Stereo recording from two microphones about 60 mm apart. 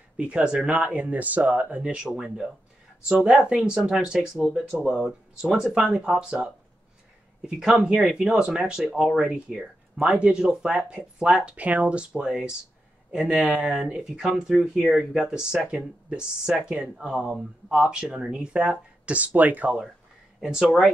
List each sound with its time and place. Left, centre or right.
0.2 s speech: centre
2.0 s speech: centre
13.4 s speech: right
13.9 s speech: centre
20.4 s speech: centre